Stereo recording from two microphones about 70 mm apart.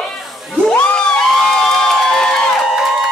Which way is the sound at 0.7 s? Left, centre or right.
Centre.